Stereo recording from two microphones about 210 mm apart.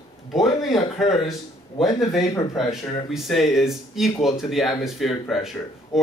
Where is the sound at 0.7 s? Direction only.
30° left (ahead or behind).